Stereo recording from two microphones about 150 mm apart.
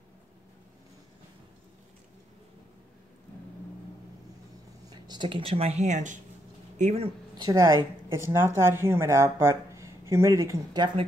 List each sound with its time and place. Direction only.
4.8 s speech: 30° right (ahead or behind); by 7.1 s 45° right (ahead or behind)
7.4 s a woman's voice: 20° right (ahead or behind)